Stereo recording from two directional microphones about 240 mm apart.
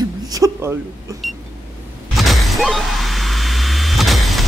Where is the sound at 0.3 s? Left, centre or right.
Centre.